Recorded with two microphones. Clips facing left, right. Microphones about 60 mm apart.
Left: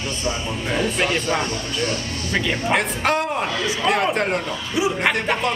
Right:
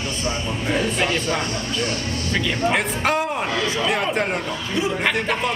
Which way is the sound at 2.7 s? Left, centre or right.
Centre.